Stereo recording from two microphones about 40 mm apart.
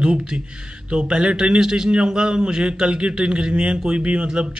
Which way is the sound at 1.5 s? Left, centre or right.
Centre.